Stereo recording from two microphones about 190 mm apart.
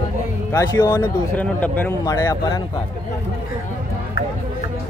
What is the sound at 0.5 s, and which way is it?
Speech, 20° left (ahead or behind).